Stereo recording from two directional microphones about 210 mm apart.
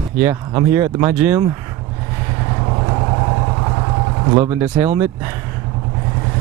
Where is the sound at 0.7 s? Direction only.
10° right (ahead or behind).